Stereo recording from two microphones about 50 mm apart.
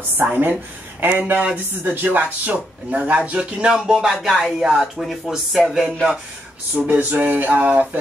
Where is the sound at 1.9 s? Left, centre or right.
Right.